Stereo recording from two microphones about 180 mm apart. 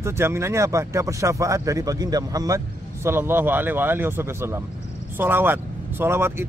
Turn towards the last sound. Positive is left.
turn(degrees=-15)  # may be behind; listen again after turning